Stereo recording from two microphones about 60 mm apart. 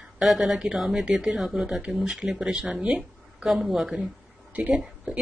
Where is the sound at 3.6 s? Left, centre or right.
Centre.